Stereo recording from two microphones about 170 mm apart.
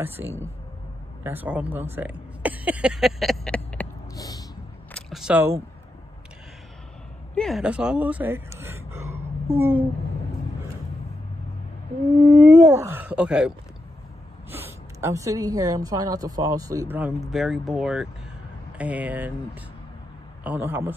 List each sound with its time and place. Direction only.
0.0 s speech: 15° right (ahead or behind); by 3.8 s 5° left (ahead or behind)
4.1 s a sound: 20° left (ahead or behind)
4.9 s a sound: 5° right (ahead or behind)
7.3 s speech: centre (ahead or behind)
12.2 s whale vocalization: 20° right (ahead or behind)
12.6 s speech: 15° right (ahead or behind)
14.5 s a woman's voice: 15° right (ahead or behind)
17.3 s speech: centre (ahead or behind)
20.4 s speech: 10° right (ahead or behind)